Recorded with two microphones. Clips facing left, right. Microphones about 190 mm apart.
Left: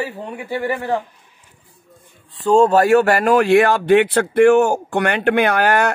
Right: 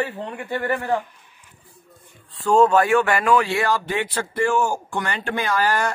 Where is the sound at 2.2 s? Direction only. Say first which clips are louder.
Left 3 dB; 25° left (ahead or behind).